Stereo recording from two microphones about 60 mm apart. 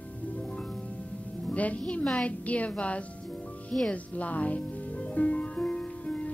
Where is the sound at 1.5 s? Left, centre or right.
Left.